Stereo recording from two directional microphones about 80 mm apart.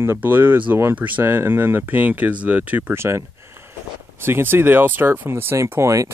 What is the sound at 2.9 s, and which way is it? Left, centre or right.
Speech, right.